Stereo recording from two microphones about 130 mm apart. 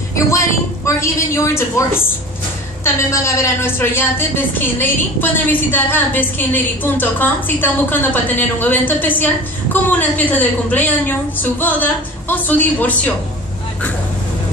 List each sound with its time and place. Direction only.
0.8 s a woman's voice: 20° left (ahead or behind)